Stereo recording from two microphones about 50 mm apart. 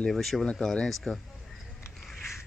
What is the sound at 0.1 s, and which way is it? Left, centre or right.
Speech, centre.